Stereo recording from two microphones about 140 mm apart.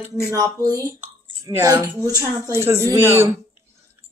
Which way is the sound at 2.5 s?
20° right (ahead or behind).